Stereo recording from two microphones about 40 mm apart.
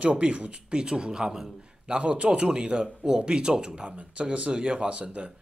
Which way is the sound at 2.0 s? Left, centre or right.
Right.